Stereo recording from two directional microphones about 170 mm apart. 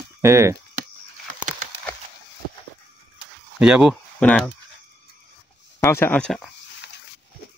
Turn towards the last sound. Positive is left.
turn(degrees=5)  # may be behind; listen again after turning